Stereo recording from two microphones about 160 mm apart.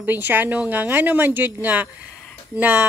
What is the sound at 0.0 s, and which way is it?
A woman's voice, 10° right (ahead or behind).